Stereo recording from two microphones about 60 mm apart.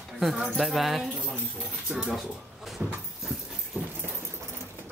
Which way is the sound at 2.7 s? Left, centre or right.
Centre.